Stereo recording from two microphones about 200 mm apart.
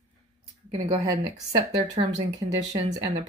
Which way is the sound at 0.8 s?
20° right (ahead or behind).